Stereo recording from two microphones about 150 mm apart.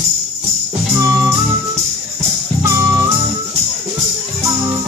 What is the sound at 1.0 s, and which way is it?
Music, 20° right (ahead or behind).